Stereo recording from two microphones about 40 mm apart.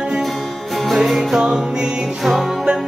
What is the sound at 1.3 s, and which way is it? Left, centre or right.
Music, centre.